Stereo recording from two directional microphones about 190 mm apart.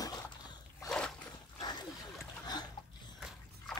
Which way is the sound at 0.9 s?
5° left (ahead or behind).